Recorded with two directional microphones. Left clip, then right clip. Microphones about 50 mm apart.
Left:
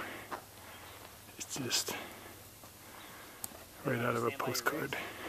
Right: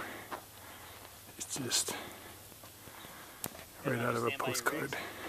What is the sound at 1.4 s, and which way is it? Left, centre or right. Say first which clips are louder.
Speech: right 1 dB; centre.